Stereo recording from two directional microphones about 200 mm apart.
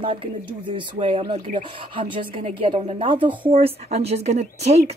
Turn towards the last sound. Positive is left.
turn(degrees=-35)  # may be behind; listen again after turning